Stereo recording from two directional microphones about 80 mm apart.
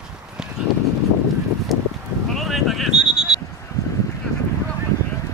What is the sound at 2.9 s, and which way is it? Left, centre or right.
Sheep, centre.